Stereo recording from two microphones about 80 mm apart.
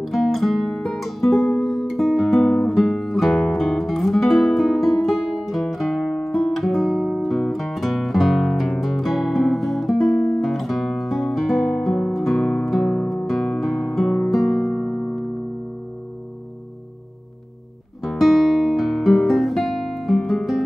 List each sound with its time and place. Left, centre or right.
0.0 s music: centre
12.1 s guitar: centre
12.6 s music: centre
18.0 s guitar: centre